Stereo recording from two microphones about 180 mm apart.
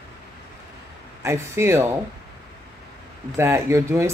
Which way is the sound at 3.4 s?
15° right (ahead or behind).